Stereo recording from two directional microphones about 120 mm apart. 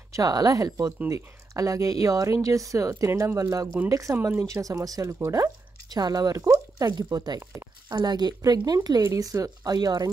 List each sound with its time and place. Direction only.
0.1 s speech: 30° right (ahead or behind)